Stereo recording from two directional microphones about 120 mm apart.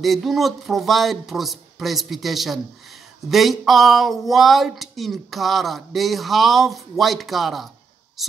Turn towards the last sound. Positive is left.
turn(degrees=0)  # may be behind; listen again after turning